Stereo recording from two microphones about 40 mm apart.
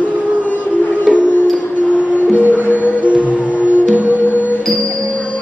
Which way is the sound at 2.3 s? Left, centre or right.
Right.